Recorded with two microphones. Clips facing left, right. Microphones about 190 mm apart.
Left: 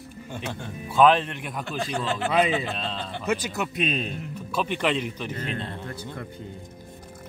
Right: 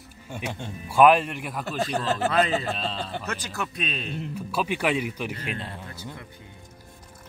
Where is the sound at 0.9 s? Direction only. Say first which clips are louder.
Right 1 dB; 10° right (ahead or behind).